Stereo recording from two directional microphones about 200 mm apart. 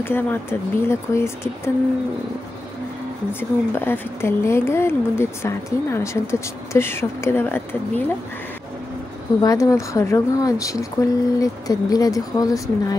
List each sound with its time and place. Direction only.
0.0 s speech: 10° left (ahead or behind)
3.3 s speech: 10° left (ahead or behind)
9.4 s speech: 15° left (ahead or behind)